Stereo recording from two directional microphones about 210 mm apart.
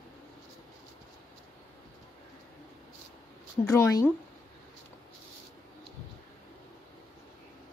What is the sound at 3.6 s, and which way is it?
Speech, 15° left (ahead or behind).